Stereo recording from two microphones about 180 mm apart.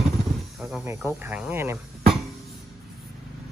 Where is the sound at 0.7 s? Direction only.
10° right (ahead or behind).